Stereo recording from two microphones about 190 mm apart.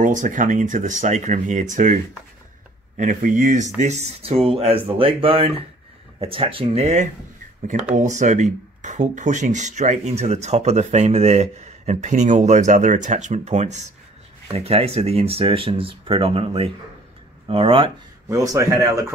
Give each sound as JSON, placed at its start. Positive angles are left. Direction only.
{"t": 0.0, "sound": "speech", "side_deg": -40}
{"t": 3.0, "sound": "speech", "side_deg": -45}